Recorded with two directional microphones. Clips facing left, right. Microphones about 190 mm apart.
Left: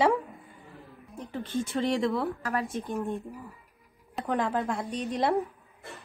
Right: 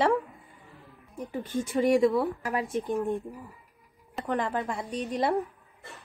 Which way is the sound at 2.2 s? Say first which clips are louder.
Even; 20° right (ahead or behind).